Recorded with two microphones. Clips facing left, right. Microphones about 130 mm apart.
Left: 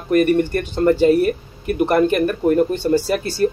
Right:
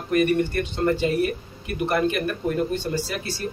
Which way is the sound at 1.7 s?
50° left (ahead or behind).